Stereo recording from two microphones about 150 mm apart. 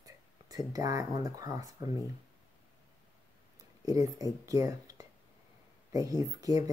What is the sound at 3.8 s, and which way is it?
Speech, 20° right (ahead or behind).